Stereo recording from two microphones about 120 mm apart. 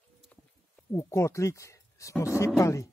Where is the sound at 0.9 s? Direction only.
25° left (ahead or behind).